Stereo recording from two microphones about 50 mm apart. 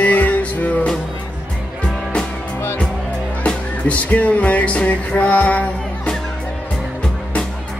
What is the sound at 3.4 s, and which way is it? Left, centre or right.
Music, left.